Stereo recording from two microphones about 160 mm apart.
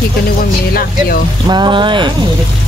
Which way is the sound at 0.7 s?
65° left (ahead or behind).